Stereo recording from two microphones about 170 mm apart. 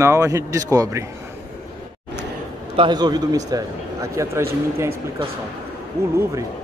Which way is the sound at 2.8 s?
25° right (ahead or behind).